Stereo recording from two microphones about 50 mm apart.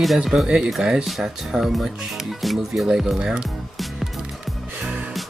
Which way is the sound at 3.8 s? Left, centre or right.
Centre.